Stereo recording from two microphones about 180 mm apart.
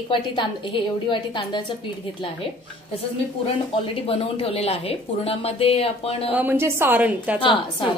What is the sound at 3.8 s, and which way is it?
A woman's voice, 30° left (ahead or behind).